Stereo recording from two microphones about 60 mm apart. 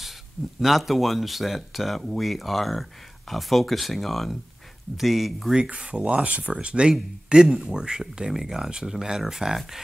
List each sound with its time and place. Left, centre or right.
0.6 s speech: centre
5.6 s speech: centre